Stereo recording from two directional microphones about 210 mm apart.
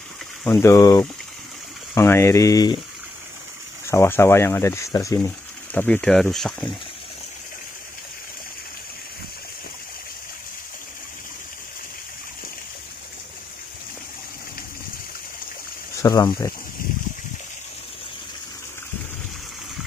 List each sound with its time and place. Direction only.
0.4 s speech: 10° left (ahead or behind)
3.8 s speech: 10° left (ahead or behind)
16.0 s speech: 20° left (ahead or behind)